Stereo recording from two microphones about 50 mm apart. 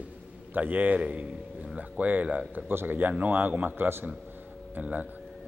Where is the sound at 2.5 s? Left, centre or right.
Right.